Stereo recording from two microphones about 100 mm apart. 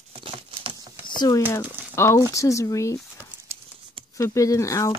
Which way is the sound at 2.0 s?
25° left (ahead or behind).